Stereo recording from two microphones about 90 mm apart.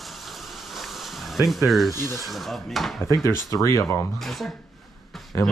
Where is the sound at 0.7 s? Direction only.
Centre (ahead or behind).